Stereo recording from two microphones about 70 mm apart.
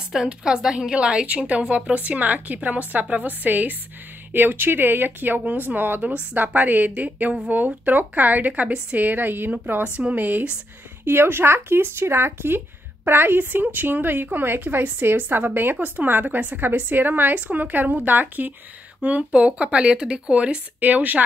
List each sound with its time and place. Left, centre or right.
0.1 s speech: centre